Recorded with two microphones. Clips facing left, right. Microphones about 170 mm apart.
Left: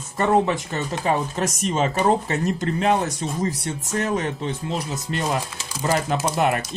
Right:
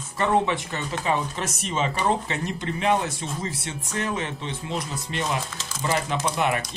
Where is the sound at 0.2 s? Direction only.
40° left (ahead or behind).